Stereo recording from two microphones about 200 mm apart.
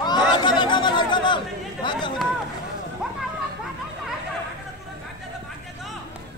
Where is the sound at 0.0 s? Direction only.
20° left (ahead or behind).